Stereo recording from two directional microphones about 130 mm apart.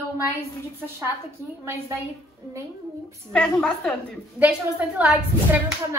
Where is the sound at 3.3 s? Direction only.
5° left (ahead or behind).